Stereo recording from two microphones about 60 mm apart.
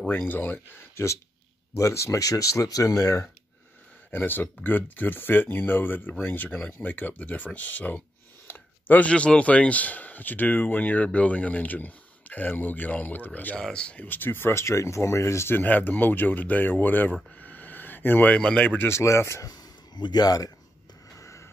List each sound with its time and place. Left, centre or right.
0.1 s speech: left
1.8 s speech: left
4.1 s speech: left
8.5 s a sound: left
9.1 s speech: centre
13.6 s speech: centre
14.0 s speech: left
15.5 s speech: left
18.8 s speech: left
20.2 s speech: left
21.2 s music: left